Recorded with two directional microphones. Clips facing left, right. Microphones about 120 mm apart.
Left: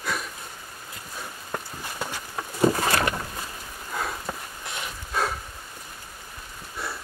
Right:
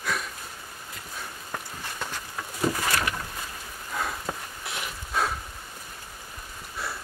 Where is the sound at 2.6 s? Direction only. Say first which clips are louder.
Left 5 dB; 30° left (ahead or behind).